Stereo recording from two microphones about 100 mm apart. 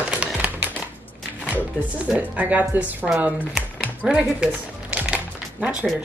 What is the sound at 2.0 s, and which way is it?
Speech, 15° right (ahead or behind).